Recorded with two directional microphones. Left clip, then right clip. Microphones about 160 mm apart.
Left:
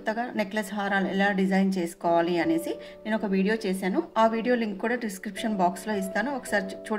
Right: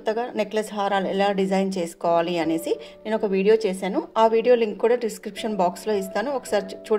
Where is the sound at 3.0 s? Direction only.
30° right (ahead or behind).